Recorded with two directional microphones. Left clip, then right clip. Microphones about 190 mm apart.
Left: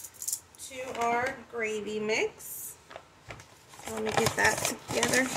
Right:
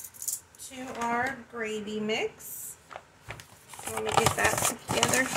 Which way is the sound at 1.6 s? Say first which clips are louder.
Left 2 dB; 35° left (ahead or behind).